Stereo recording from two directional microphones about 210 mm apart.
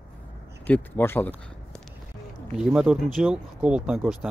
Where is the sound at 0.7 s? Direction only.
10° left (ahead or behind).